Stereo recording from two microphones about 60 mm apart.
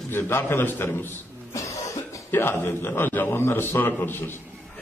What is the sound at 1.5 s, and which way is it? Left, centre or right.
Cough, left.